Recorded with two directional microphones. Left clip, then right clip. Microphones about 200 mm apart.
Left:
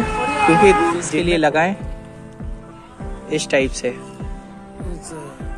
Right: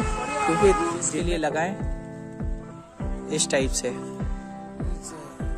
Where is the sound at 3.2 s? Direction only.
30° right (ahead or behind).